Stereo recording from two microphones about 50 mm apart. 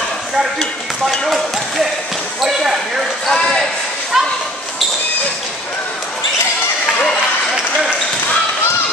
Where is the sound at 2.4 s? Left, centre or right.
Centre.